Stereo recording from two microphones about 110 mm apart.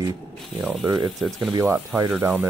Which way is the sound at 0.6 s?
15° right (ahead or behind).